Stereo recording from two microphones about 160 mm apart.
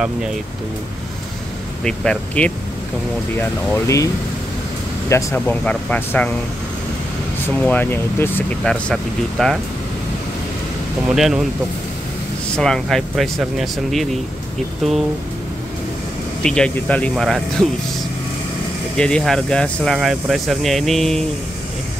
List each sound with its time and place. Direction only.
1.9 s speech: 5° left (ahead or behind)
3.3 s speech: 15° left (ahead or behind)
5.1 s speech: 10° left (ahead or behind)
7.4 s speech: 10° left (ahead or behind)
11.1 s speech: 5° right (ahead or behind)
12.5 s speech: 5° left (ahead or behind)
16.4 s speech: 5° left (ahead or behind)
18.9 s speech: 5° left (ahead or behind)